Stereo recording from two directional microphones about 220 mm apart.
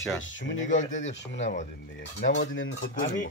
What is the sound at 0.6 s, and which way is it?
Speech, 35° left (ahead or behind).